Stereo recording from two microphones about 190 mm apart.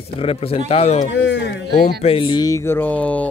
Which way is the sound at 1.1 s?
70° left (ahead or behind).